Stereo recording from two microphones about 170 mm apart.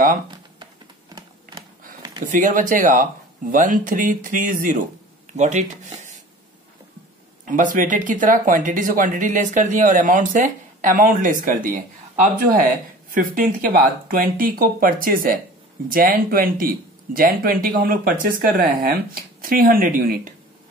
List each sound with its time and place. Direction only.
2.3 s speech: 50° right (ahead or behind)
7.4 s speech: 50° right (ahead or behind)